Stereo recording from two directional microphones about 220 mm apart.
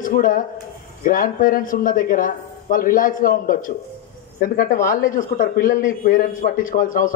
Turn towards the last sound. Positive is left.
turn(degrees=40)  # may be behind; listen again after turning